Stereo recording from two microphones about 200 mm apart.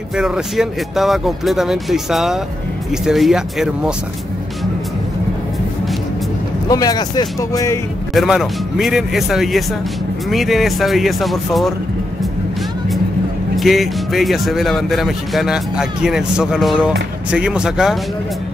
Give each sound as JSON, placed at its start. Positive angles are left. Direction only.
{"t": 0.1, "sound": "speech", "side_deg": 0}
{"t": 6.7, "sound": "speech", "side_deg": 20}
{"t": 8.1, "sound": "speech", "side_deg": 0}
{"t": 13.6, "sound": "speech", "side_deg": 0}